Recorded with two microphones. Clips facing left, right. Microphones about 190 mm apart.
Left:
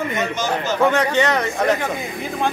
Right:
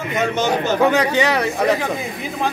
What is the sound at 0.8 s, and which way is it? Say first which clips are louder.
A man's voice: left 1 dB; 10° right (ahead or behind).